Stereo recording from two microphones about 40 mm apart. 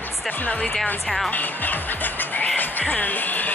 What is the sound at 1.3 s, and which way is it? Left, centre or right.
Music, left.